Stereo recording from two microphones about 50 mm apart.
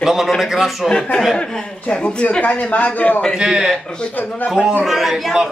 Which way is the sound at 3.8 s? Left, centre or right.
Centre.